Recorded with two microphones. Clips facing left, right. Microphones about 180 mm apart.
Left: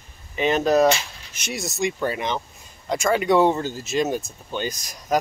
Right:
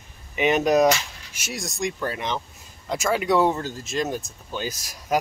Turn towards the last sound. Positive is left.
turn(degrees=-5)  # may be behind; listen again after turning